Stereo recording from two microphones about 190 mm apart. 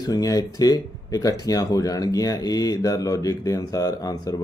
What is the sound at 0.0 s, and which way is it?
Speech, 20° left (ahead or behind).